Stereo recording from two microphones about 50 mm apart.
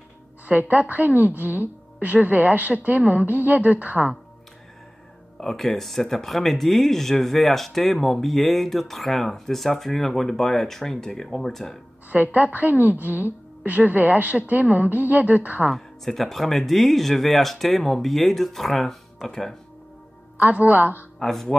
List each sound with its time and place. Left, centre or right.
0.5 s a woman's voice: right
5.4 s speech: centre
12.1 s a woman's voice: right
15.7 s speech: centre
20.3 s a woman's voice: right
21.2 s speech: centre